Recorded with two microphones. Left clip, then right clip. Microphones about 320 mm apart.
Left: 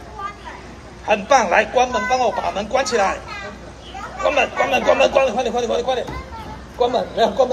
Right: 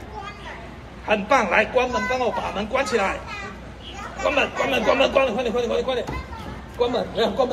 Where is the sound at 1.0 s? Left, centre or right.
Left.